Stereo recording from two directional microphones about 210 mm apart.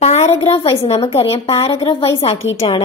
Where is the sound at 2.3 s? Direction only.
70° left (ahead or behind).